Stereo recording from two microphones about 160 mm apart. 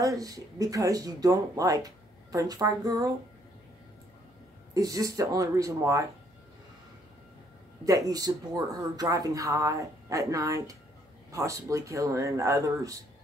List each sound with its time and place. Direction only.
0.0 s speech: 20° right (ahead or behind)
4.7 s speech: 20° right (ahead or behind)
7.8 s speech: 20° right (ahead or behind)